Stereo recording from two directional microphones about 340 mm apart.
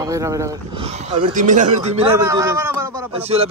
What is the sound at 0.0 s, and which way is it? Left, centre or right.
Speech, centre.